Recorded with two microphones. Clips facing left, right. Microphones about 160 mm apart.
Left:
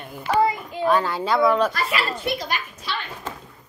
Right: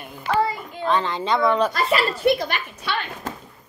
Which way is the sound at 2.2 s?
60° right (ahead or behind).